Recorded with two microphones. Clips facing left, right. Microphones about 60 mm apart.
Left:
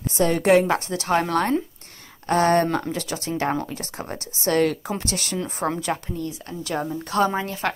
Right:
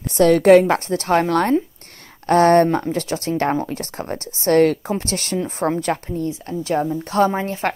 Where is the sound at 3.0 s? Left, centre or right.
Right.